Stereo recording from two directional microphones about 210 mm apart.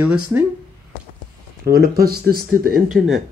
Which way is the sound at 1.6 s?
45° right (ahead or behind).